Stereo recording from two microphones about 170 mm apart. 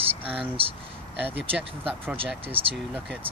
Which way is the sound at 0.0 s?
35° right (ahead or behind).